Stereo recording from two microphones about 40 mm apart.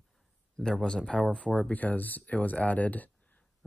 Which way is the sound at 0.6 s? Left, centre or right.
Left.